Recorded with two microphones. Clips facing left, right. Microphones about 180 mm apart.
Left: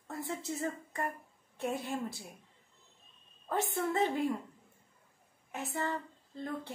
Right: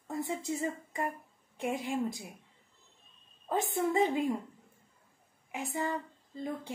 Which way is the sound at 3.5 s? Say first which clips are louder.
Right 2 dB; 15° right (ahead or behind).